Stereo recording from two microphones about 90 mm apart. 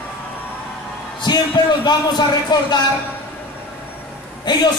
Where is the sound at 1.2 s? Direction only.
50° left (ahead or behind).